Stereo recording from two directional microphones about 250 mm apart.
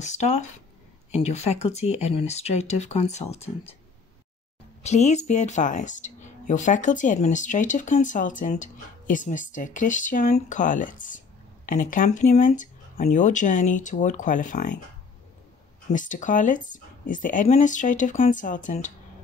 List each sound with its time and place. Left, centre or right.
0.0 s speech: left
4.8 s speech: left
15.9 s speech: left